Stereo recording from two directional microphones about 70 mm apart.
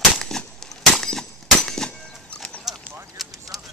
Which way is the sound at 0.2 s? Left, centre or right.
Centre.